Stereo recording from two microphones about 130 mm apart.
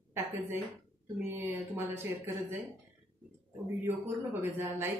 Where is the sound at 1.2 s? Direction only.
15° right (ahead or behind).